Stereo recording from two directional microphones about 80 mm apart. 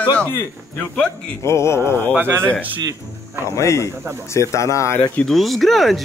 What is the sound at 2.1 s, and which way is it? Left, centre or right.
Speech, right.